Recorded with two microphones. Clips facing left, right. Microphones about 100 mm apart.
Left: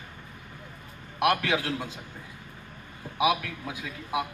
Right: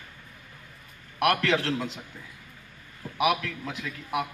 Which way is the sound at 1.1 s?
20° left (ahead or behind).